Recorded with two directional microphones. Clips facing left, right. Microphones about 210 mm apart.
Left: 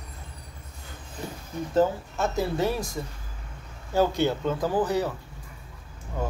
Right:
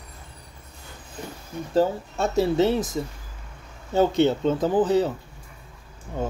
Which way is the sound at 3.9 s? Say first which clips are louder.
Right 4 dB; 20° right (ahead or behind).